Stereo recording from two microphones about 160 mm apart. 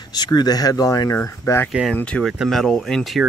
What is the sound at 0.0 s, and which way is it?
Speech, 25° left (ahead or behind).